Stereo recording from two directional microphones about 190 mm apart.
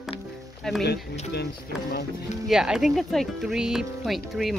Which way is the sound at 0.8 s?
60° left (ahead or behind).